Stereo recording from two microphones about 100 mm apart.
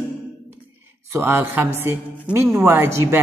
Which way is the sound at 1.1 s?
25° right (ahead or behind).